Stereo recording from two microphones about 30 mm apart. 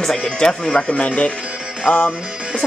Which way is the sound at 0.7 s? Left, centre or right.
Left.